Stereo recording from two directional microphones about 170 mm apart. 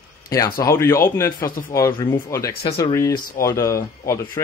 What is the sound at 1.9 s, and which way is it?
Speech, 30° left (ahead or behind).